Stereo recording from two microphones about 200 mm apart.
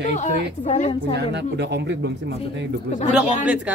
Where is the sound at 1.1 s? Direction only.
60° right (ahead or behind).